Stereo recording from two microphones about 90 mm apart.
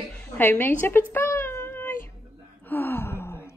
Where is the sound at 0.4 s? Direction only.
20° left (ahead or behind).